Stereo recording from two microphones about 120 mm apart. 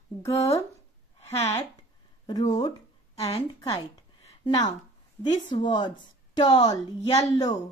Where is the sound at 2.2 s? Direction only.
35° left (ahead or behind).